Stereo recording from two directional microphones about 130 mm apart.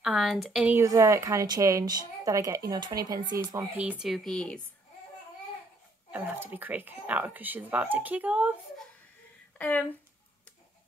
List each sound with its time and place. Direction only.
0.0 s speech: 5° right (ahead or behind)
0.7 s speech: 25° right (ahead or behind)
3.3 s speech: 15° right (ahead or behind); by 4.6 s 5° left (ahead or behind)
6.1 s speech: 15° right (ahead or behind)
9.6 s speech: 10° left (ahead or behind)